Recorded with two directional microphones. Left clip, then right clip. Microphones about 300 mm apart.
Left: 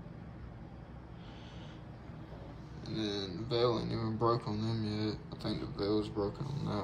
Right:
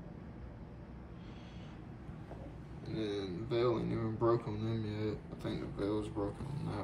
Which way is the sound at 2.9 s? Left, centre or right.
Centre.